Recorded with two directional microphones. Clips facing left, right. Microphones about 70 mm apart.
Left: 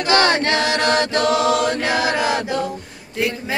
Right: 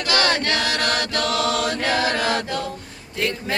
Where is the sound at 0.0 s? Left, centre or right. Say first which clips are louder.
Left 5 dB; left.